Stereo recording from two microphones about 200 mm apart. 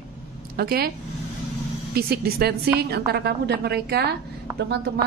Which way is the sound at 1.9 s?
50° right (ahead or behind).